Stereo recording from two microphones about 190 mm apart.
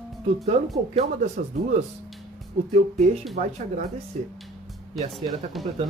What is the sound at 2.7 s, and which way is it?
Speech, 40° right (ahead or behind).